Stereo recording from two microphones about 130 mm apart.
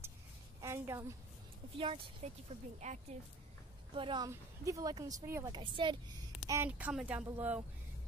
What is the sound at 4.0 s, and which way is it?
Speech, 40° right (ahead or behind).